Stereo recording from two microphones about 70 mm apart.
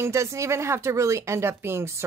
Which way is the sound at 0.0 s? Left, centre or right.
Right.